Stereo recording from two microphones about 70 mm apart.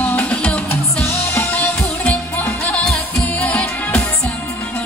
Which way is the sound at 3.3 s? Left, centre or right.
Centre.